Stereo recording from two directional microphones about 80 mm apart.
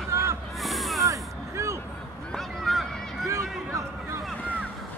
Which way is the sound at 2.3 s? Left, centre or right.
Centre.